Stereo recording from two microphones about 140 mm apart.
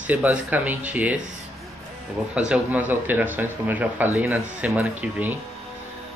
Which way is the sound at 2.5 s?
10° right (ahead or behind).